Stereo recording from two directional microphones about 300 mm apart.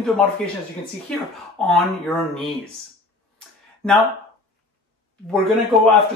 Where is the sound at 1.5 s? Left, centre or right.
Centre.